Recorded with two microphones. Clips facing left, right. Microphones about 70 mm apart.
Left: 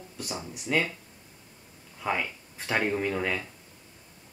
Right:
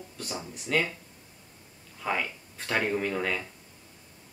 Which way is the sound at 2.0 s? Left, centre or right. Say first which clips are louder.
Left 1 dB; centre.